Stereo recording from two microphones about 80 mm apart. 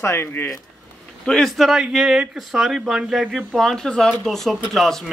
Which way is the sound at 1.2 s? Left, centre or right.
Centre.